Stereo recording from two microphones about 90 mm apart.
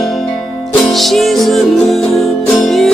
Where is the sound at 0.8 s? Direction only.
Centre (ahead or behind).